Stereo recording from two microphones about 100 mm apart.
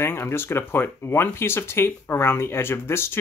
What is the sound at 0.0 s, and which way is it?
Speech, 25° left (ahead or behind).